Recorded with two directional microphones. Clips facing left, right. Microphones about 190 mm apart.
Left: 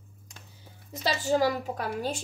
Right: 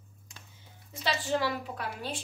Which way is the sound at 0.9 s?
40° left (ahead or behind).